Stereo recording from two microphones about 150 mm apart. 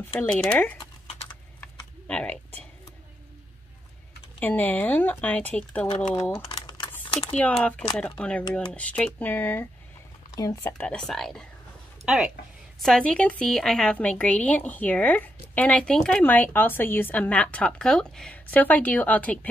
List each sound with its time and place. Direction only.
0.3 s a woman's voice: 10° left (ahead or behind)
1.6 s typing: 10° left (ahead or behind)
4.4 s a woman's voice: 10° left (ahead or behind)
6.3 s typing: 25° left (ahead or behind)
7.6 s a woman's voice: 5° left (ahead or behind)
10.3 s speech: 25° left (ahead or behind)
10.7 s a woman's voice: 5° left (ahead or behind)